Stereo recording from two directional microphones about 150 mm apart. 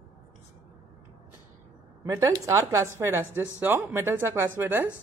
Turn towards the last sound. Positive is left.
turn(degrees=-15)  # may be behind; listen again after turning